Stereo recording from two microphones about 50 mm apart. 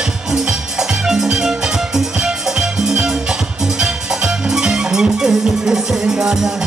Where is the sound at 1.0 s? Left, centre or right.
Centre.